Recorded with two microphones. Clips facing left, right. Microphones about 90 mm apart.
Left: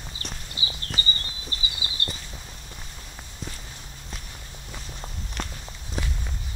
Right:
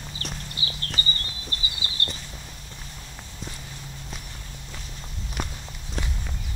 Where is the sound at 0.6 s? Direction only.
20° left (ahead or behind).